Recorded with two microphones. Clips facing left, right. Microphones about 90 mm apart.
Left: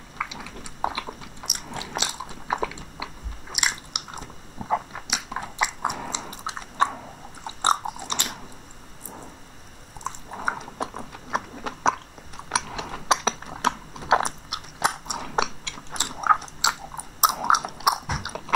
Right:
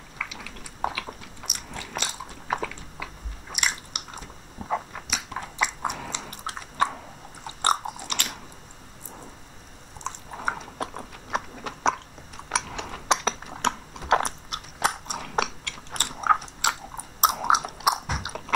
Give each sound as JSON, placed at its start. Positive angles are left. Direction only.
{"t": 0.3, "sound": "a sound", "side_deg": 5}
{"t": 1.4, "sound": "biting", "side_deg": 60}
{"t": 1.8, "sound": "biting", "side_deg": 5}
{"t": 5.1, "sound": "chewing", "side_deg": 5}
{"t": 7.7, "sound": "biting", "side_deg": 0}
{"t": 10.0, "sound": "a sound", "side_deg": 5}
{"t": 12.4, "sound": "mechanisms", "side_deg": 0}